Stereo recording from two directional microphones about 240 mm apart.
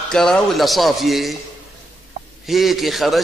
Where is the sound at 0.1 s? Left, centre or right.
Centre.